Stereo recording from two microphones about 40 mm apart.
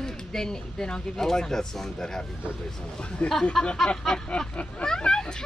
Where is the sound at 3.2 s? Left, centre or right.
Left.